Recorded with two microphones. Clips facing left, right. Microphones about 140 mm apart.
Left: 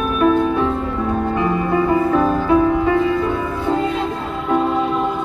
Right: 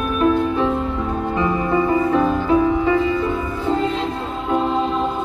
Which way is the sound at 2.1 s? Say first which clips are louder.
Left 1 dB; 55° left (ahead or behind).